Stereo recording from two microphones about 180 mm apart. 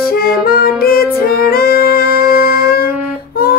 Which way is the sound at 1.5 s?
55° left (ahead or behind).